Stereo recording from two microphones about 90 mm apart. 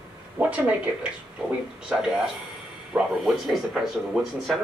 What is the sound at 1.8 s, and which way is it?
Speech, 5° right (ahead or behind).